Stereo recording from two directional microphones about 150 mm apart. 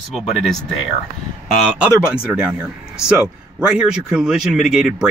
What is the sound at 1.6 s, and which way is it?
Speech, 5° right (ahead or behind).